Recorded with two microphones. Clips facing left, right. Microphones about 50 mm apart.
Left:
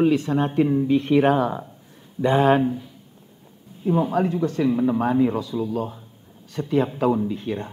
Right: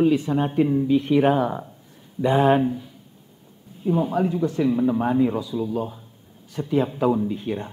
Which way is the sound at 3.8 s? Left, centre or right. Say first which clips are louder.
Left 1 dB; centre.